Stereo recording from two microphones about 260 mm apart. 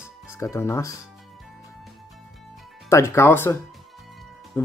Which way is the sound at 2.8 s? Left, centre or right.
Centre.